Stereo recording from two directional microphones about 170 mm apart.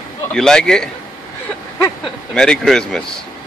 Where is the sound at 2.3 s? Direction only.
5° left (ahead or behind).